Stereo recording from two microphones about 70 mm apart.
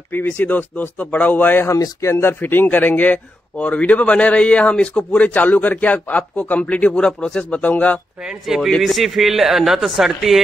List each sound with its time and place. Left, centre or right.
0.1 s speech: left
1.7 s speech: left
2.4 s speech: left
8.3 s a man's voice: centre